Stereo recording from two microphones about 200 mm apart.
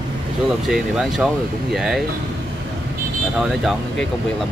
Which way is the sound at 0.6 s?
Centre (ahead or behind).